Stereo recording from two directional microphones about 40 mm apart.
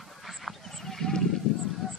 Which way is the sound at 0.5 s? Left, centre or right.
Centre.